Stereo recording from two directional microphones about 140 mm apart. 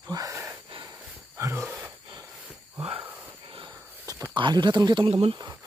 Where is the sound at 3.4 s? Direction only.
35° right (ahead or behind).